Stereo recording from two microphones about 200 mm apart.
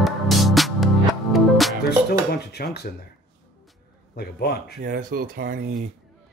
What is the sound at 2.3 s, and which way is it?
Dishes, 55° left (ahead or behind).